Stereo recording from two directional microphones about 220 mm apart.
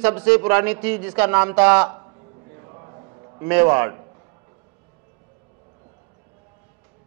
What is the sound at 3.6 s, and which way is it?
Speech, 15° right (ahead or behind).